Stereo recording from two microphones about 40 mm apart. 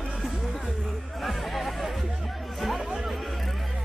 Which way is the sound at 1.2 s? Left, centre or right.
Centre.